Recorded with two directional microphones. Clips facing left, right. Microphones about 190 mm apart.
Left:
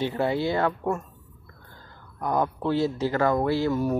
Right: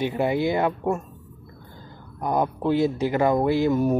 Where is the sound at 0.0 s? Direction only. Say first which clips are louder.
Right 2 dB; 15° right (ahead or behind).